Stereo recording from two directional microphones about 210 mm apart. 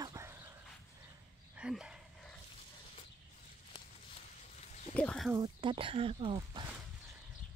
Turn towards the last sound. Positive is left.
turn(degrees=-25)  # may be behind; listen again after turning